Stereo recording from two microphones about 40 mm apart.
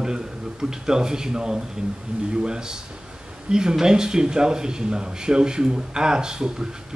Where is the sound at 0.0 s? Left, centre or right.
Centre.